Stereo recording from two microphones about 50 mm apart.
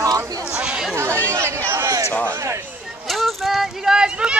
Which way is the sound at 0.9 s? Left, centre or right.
Right.